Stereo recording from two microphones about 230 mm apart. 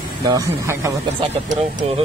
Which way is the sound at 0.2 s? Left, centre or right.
Centre.